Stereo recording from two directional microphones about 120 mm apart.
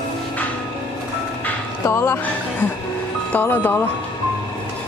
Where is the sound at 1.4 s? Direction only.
20° left (ahead or behind).